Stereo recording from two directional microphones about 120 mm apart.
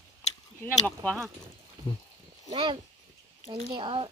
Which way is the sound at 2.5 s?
45° right (ahead or behind).